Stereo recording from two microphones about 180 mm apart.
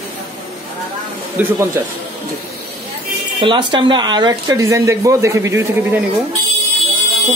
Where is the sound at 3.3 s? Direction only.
25° right (ahead or behind).